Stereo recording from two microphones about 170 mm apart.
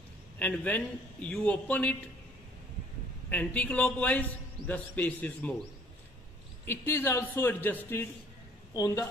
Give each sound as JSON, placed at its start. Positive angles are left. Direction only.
{"t": 0.4, "sound": "a man's voice", "side_deg": 10}
{"t": 3.3, "sound": "a man's voice", "side_deg": 10}
{"t": 6.6, "sound": "a man's voice", "side_deg": 15}